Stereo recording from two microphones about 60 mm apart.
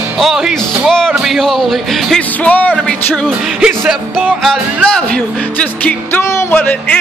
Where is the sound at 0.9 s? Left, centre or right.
Centre.